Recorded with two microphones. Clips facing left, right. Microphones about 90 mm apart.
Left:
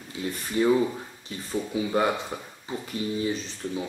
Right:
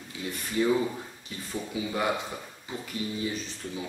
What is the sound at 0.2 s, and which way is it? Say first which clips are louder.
Speech: left 4 dB; 40° left (ahead or behind).